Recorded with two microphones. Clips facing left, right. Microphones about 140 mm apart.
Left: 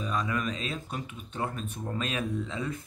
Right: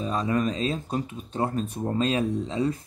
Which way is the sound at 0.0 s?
35° right (ahead or behind).